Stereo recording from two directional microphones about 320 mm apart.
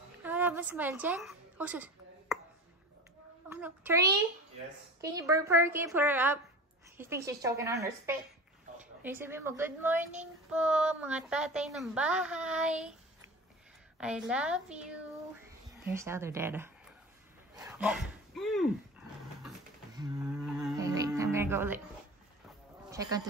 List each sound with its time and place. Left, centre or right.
0.2 s a sound: centre
3.4 s a woman's voice: centre
13.9 s a woman's voice: centre
17.6 s a sound: centre
20.4 s music: centre
22.8 s speech: centre